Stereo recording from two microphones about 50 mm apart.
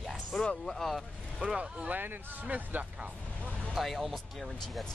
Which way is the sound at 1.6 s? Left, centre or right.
Right.